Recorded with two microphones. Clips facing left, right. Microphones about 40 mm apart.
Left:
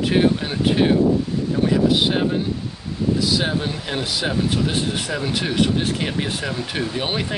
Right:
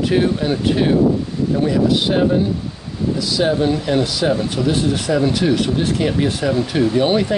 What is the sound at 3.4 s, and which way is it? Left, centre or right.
Speech, centre.